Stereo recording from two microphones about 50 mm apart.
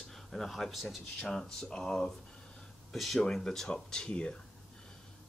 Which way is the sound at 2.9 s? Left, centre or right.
Centre.